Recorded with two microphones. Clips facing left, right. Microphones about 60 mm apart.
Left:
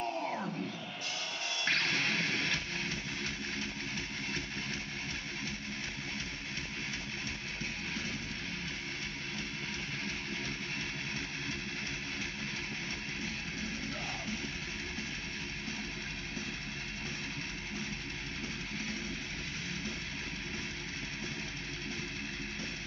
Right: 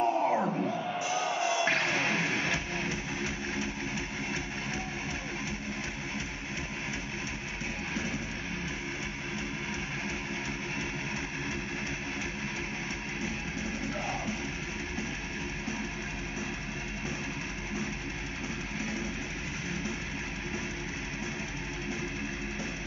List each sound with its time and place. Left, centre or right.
0.0 s crowd: right
0.4 s music: right
1.0 s music: centre